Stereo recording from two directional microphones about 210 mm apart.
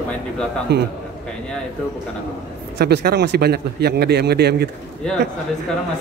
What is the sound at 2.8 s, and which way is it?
A man's voice, 50° right (ahead or behind).